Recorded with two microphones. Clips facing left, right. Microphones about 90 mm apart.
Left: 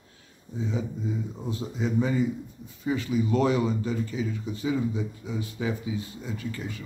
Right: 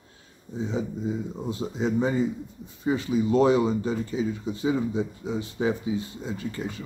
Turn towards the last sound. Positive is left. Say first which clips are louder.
# right 3 dB
turn(degrees=-30)  # may be behind; listen again after turning